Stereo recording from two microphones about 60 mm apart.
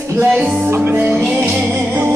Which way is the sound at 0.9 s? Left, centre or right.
Right.